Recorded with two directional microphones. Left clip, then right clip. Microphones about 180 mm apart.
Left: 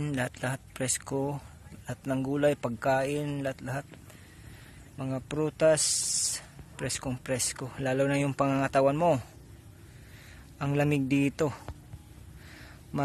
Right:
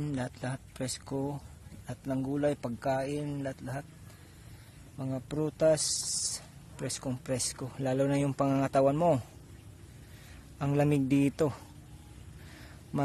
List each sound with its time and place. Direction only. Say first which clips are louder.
0.0 s a man's voice: left 4 dB; 10° left (ahead or behind)
4.9 s speech: left 3 dB; 5° left (ahead or behind)
10.6 s speech: even; 10° right (ahead or behind)